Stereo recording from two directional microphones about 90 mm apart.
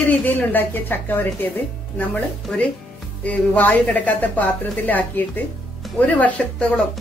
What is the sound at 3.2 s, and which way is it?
A woman's voice, 15° left (ahead or behind).